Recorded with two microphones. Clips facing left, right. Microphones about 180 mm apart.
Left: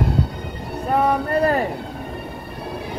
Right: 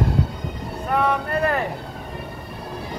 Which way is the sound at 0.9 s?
35° left (ahead or behind).